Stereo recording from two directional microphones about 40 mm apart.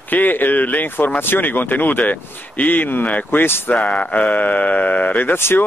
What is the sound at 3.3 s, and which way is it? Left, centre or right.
Speech, left.